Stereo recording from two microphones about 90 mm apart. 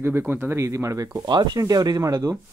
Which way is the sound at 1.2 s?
50° right (ahead or behind).